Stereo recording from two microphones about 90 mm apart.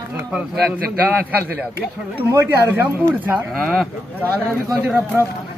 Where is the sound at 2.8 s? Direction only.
20° right (ahead or behind).